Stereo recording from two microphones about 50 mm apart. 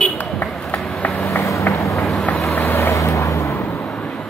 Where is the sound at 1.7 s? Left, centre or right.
Left.